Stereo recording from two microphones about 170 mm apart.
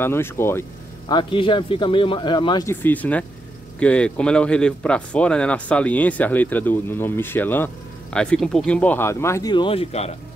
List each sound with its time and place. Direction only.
0.0 s speech: 15° left (ahead or behind)
1.0 s a man's voice: 30° left (ahead or behind)
2.6 s speech: 15° left (ahead or behind); by 10.1 s 35° left (ahead or behind)